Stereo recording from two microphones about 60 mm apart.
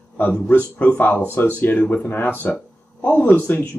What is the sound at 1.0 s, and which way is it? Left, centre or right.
Speech, left.